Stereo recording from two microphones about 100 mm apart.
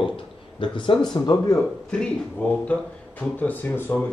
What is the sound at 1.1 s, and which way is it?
Speech, 40° left (ahead or behind).